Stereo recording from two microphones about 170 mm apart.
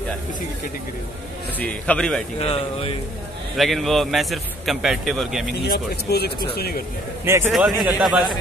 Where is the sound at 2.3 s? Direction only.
35° left (ahead or behind).